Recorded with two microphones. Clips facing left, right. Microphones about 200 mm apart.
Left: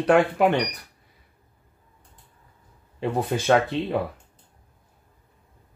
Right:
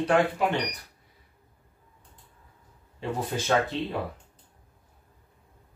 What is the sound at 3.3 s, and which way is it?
Speech, 65° left (ahead or behind).